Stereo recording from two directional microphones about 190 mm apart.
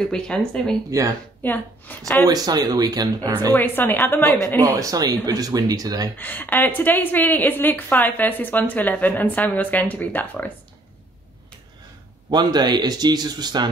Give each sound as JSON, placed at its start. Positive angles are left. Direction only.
{"t": 0.1, "sound": "speech", "side_deg": 5}
{"t": 0.8, "sound": "speech", "side_deg": -15}
{"t": 1.4, "sound": "a woman's voice", "side_deg": 10}
{"t": 2.2, "sound": "speech", "side_deg": -20}
{"t": 3.5, "sound": "a woman's voice", "side_deg": 10}
{"t": 4.7, "sound": "speech", "side_deg": -20}
{"t": 6.1, "sound": "a woman's voice", "side_deg": 10}
{"t": 12.3, "sound": "speech", "side_deg": -20}